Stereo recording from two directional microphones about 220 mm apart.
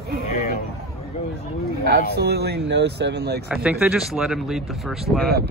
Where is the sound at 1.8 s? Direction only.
45° right (ahead or behind).